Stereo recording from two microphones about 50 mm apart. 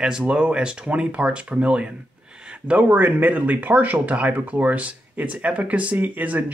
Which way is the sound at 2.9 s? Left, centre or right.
Right.